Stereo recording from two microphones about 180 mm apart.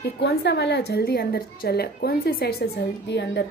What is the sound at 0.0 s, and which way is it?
A woman's voice, 65° left (ahead or behind).